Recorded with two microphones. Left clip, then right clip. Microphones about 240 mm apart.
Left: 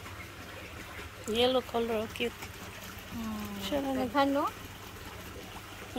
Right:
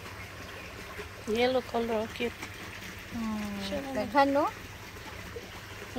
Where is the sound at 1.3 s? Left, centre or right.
Centre.